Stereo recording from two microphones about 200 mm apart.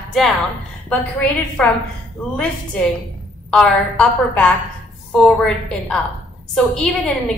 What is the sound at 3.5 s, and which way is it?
A woman's voice, 5° left (ahead or behind).